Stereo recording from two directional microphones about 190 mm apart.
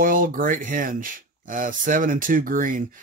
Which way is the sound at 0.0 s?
45° right (ahead or behind).